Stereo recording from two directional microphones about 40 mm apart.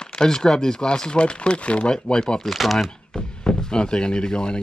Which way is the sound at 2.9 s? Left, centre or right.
Left.